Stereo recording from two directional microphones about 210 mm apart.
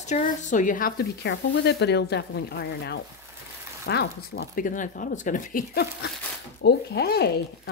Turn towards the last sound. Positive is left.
turn(degrees=50)  # may be behind; listen again after turning